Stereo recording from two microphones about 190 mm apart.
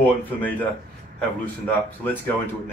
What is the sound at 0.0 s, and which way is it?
Speech, 10° left (ahead or behind).